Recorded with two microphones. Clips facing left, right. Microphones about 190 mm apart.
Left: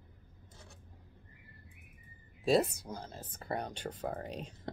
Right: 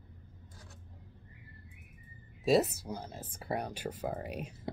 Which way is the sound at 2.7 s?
10° right (ahead or behind).